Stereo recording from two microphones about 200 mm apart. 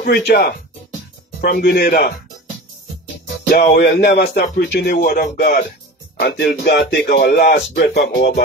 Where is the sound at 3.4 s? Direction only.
45° left (ahead or behind).